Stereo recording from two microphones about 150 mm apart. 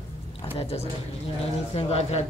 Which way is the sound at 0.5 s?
40° left (ahead or behind).